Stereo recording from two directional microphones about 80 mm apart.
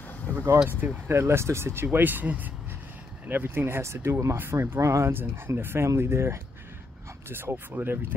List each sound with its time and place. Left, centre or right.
0.7 s speech: right
1.1 s speech: right